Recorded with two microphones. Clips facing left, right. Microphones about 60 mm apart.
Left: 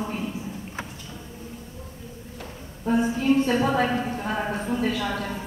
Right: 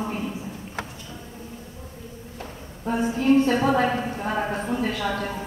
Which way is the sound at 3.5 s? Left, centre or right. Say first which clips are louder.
Right 1 dB; centre.